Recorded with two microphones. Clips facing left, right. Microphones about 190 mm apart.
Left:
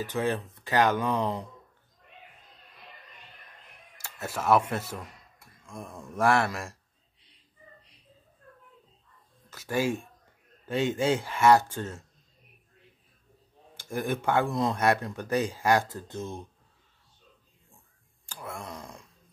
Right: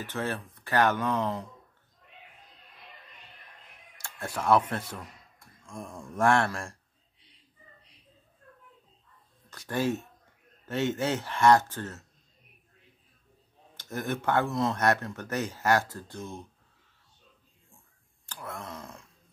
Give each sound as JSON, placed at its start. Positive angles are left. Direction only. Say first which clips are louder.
{"t": 0.0, "sound": "speech", "louder": "left 4 dB", "side_deg": 15}
{"t": 4.0, "sound": "speech", "louder": "even", "side_deg": 5}
{"t": 9.5, "sound": "speech", "louder": "left 1 dB", "side_deg": 10}
{"t": 13.7, "sound": "speech", "louder": "left 2 dB", "side_deg": 10}
{"t": 18.2, "sound": "speech", "louder": "left 1 dB", "side_deg": 10}